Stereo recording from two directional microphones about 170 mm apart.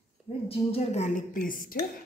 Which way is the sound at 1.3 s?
55° left (ahead or behind).